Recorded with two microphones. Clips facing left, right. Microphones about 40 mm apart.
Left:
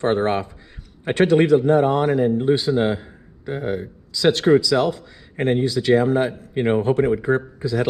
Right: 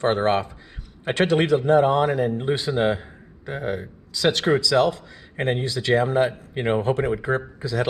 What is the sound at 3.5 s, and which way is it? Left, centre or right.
Speech, right.